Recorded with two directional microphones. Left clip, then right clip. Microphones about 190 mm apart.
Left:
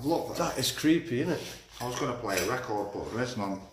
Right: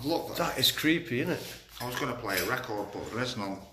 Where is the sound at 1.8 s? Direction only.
20° left (ahead or behind).